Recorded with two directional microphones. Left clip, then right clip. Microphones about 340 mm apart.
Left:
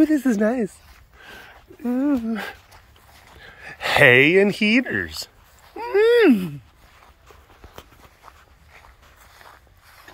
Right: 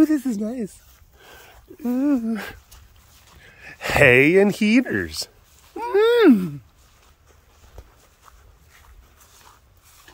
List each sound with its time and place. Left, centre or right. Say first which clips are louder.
0.0 s speech: even; centre
1.8 s speech: even; centre
8.7 s walk: left 5 dB; centre